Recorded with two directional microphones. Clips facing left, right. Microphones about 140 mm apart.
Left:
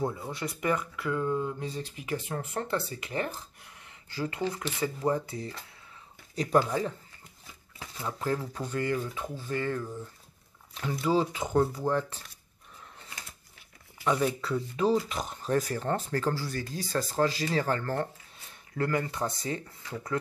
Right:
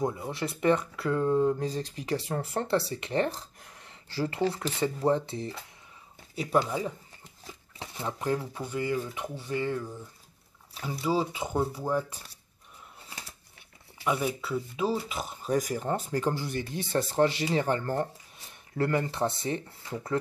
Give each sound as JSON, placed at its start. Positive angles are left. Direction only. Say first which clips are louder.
{"t": 0.0, "sound": "speech", "louder": "right 2 dB", "side_deg": -20}
{"t": 6.3, "sound": "speech", "louder": "left 1 dB", "side_deg": -5}
{"t": 7.8, "sound": "speech", "louder": "right 2 dB", "side_deg": -30}
{"t": 8.2, "sound": "speech", "louder": "right 1 dB", "side_deg": -15}
{"t": 14.0, "sound": "speech", "louder": "left 2 dB", "side_deg": -5}